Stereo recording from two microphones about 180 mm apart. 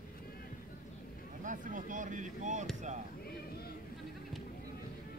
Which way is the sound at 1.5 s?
45° right (ahead or behind).